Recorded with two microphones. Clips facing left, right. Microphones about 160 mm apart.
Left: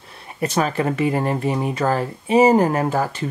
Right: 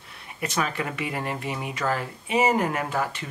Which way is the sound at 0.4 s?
35° left (ahead or behind).